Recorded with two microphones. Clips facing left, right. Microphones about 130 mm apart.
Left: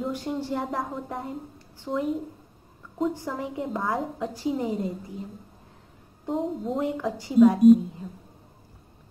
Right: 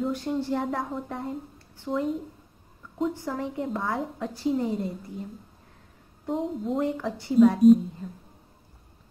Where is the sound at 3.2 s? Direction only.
15° left (ahead or behind).